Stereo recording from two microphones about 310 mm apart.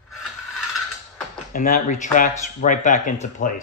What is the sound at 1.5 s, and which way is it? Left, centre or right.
Speech, left.